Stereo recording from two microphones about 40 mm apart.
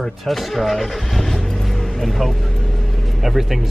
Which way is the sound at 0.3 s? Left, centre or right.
Centre.